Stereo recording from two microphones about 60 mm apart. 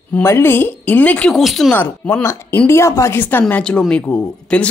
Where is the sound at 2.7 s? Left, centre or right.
Left.